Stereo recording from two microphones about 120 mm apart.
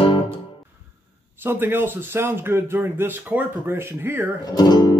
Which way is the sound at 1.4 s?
15° right (ahead or behind).